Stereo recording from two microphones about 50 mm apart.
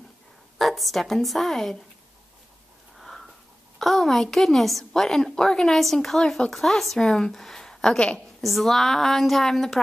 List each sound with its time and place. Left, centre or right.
0.6 s a woman's voice: centre
3.0 s wheeze: centre
3.8 s a woman's voice: centre